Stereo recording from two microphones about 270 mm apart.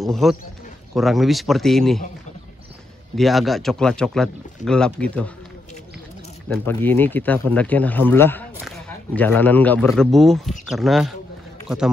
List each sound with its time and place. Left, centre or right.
0.0 s speech: centre
3.2 s speech: centre
6.5 s speech: centre